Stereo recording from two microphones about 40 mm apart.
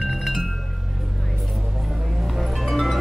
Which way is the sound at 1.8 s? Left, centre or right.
Centre.